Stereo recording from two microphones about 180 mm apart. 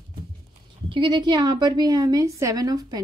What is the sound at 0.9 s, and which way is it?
A woman's voice, 25° right (ahead or behind).